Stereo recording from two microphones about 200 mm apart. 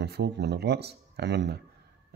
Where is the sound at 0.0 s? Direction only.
55° right (ahead or behind).